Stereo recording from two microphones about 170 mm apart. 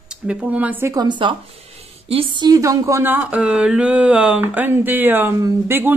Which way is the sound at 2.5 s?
20° right (ahead or behind).